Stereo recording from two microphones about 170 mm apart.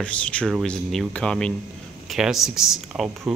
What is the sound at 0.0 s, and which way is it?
Speech, 5° left (ahead or behind).